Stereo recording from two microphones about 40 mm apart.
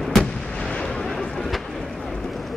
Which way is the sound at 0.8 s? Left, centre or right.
Centre.